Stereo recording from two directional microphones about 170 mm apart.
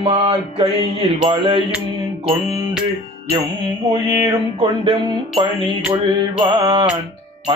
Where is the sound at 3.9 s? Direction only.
20° right (ahead or behind).